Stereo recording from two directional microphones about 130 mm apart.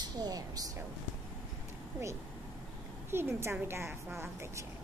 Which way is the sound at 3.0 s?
20° right (ahead or behind).